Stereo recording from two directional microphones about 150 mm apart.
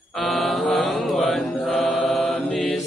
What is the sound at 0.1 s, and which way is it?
Mantra, centre (ahead or behind).